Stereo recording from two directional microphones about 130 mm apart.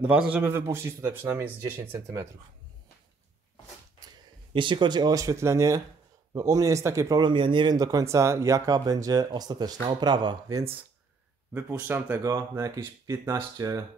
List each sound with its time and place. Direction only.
0.0 s a man's voice: 10° right (ahead or behind)
4.6 s speech: 40° right (ahead or behind)
11.5 s a man's voice: 15° right (ahead or behind); by 13.7 s 30° right (ahead or behind)